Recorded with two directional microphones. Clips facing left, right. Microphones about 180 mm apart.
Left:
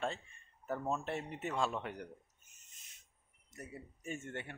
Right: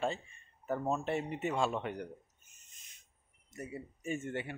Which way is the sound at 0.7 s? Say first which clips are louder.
Right 3 dB; 15° right (ahead or behind).